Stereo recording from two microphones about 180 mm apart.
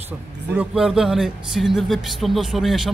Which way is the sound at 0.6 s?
5° right (ahead or behind).